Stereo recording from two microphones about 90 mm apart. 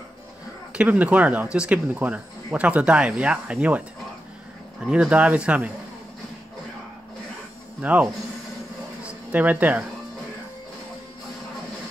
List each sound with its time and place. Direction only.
0.7 s speech: 15° right (ahead or behind)
4.8 s speech: 10° right (ahead or behind)
7.8 s speech: 15° right (ahead or behind)
9.0 s a sound: 15° right (ahead or behind)